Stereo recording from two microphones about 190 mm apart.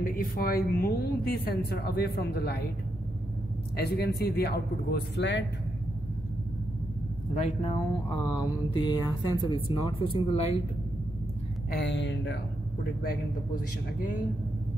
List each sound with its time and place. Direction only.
0.0 s a woman's voice: 50° left (ahead or behind)
3.7 s a woman's voice: 60° left (ahead or behind)
7.6 s speech: 30° left (ahead or behind)
11.7 s speech: 65° left (ahead or behind)
13.0 s speech: 50° left (ahead or behind)